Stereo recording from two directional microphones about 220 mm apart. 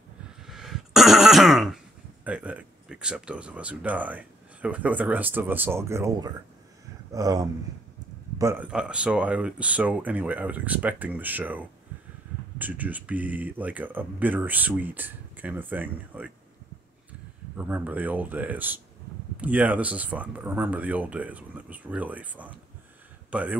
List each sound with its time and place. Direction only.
0.4 s throat clearing: centre (ahead or behind)
2.2 s speech: 5° right (ahead or behind)
17.6 s a man's voice: 5° right (ahead or behind)